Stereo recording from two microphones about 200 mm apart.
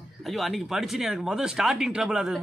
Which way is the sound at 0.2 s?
Centre (ahead or behind).